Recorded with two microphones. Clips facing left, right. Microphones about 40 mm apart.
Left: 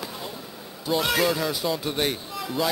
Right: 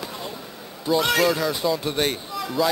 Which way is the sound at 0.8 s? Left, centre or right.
Centre.